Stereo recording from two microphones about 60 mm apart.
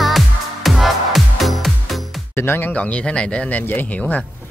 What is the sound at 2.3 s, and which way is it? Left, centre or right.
Speech, left.